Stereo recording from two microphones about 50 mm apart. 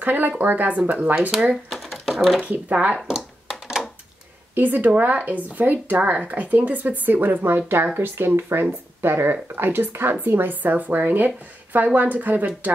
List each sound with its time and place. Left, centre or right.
0.0 s a woman's voice: right
1.7 s a sound: centre
2.4 s a woman's voice: right
4.6 s a woman's voice: right